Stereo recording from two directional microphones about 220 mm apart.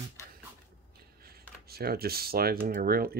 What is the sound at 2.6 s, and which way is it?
Speech, 40° right (ahead or behind).